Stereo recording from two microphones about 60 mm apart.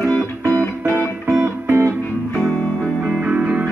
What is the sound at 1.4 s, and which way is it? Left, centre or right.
Music, right.